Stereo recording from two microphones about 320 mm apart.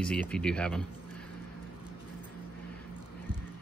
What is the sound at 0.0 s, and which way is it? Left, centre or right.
Speech, centre.